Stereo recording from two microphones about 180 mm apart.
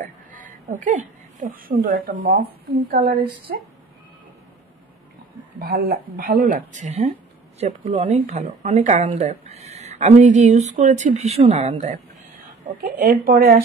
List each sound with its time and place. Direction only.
0.3 s speech: 45° right (ahead or behind)
5.6 s speech: 55° right (ahead or behind); by 11.9 s 35° right (ahead or behind)
13.0 s speech: 50° right (ahead or behind)